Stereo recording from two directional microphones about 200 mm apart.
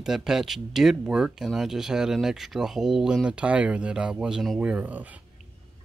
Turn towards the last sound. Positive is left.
turn(degrees=-5)  # may be behind; listen again after turning